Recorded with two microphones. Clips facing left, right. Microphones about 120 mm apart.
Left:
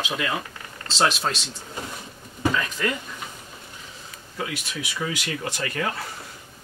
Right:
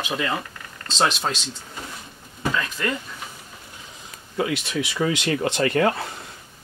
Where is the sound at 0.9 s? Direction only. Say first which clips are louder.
Even; 5° left (ahead or behind).